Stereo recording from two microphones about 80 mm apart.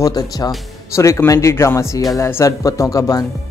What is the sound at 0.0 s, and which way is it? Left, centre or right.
Speech, left.